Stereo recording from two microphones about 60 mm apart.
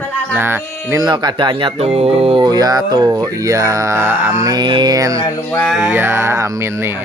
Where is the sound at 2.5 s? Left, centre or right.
Right.